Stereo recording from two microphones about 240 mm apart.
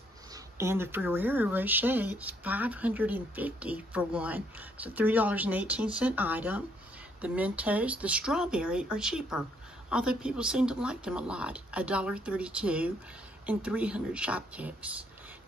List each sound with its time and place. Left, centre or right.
0.3 s speech: centre